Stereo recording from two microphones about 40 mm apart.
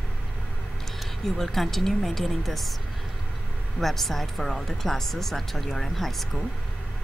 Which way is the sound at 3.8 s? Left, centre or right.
Centre.